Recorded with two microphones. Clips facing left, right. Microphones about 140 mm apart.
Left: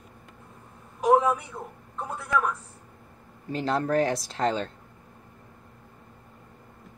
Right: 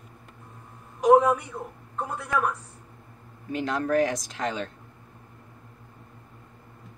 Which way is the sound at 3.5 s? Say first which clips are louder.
Even; 35° left (ahead or behind).